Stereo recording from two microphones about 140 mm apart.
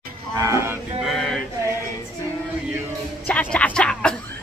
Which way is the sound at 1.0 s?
Centre (ahead or behind).